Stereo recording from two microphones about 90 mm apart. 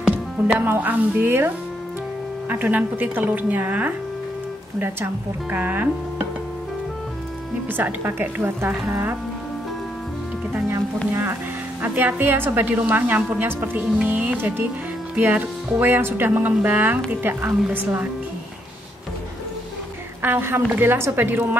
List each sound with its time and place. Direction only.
0.0 s music: 15° right (ahead or behind)
0.7 s speech: 20° right (ahead or behind)
2.5 s speech: 20° right (ahead or behind)
7.7 s speech: 25° right (ahead or behind)
11.8 s speech: 20° right (ahead or behind)
20.2 s speech: 25° right (ahead or behind)